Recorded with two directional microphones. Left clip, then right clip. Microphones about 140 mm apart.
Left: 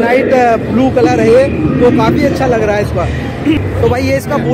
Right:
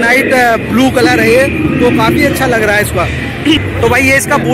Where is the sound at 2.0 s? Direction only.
15° left (ahead or behind).